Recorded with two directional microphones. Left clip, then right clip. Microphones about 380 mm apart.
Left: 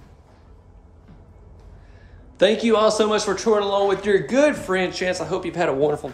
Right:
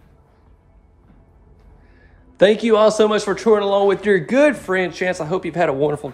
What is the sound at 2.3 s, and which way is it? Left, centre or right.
Speech, centre.